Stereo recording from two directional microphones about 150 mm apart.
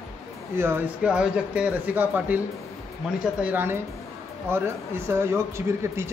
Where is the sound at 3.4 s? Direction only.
15° right (ahead or behind).